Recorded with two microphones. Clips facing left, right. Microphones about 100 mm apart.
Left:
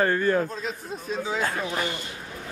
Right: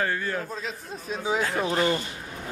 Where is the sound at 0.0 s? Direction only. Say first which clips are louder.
Left 6 dB; 40° left (ahead or behind).